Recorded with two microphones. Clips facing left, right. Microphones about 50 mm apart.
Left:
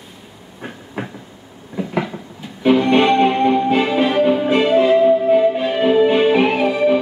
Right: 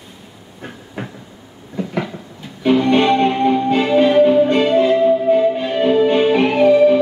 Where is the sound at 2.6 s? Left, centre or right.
Centre.